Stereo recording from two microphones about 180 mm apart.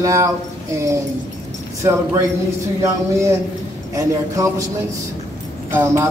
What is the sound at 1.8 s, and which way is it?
Speech, 15° right (ahead or behind).